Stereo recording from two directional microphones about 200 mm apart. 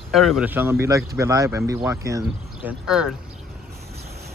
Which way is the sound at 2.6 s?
5° right (ahead or behind).